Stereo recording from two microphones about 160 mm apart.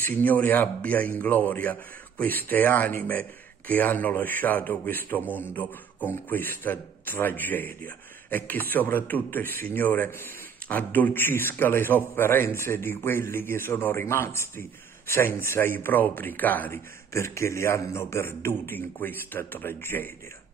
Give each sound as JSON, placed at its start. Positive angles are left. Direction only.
{"t": 0.0, "sound": "a man's voice", "side_deg": 10}